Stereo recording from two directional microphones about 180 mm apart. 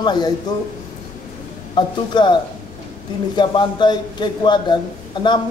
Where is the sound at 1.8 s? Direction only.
25° left (ahead or behind).